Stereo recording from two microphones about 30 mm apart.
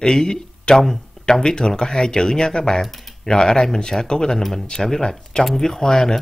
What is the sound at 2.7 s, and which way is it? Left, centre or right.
Speech, centre.